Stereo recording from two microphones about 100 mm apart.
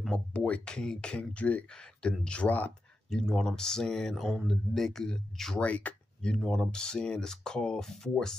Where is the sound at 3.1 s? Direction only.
5° left (ahead or behind).